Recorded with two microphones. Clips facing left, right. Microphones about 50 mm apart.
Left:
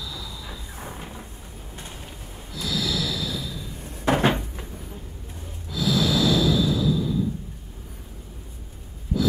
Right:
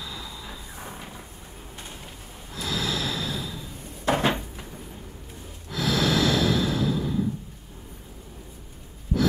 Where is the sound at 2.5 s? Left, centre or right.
Right.